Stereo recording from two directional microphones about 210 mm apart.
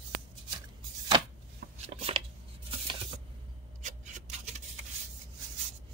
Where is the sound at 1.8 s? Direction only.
25° right (ahead or behind).